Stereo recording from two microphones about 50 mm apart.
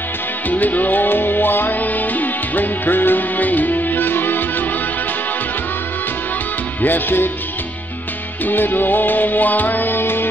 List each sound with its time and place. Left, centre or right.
0.5 s music: left
6.8 s music: left
8.5 s music: left